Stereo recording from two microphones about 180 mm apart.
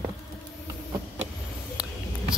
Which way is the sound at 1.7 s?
5° right (ahead or behind).